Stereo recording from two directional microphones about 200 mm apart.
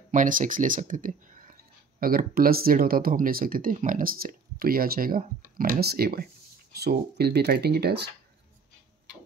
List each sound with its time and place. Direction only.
0.1 s speech: 40° right (ahead or behind)